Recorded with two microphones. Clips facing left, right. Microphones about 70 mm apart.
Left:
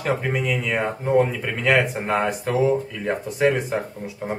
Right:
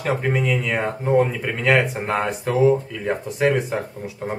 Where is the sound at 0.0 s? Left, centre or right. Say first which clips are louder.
Right 2 dB; centre.